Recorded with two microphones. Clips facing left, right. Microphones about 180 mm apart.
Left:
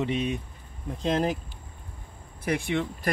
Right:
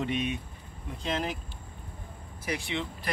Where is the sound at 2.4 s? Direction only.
55° left (ahead or behind).